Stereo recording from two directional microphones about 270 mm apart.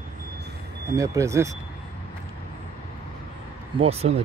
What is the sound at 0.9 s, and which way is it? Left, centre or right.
Speech, centre.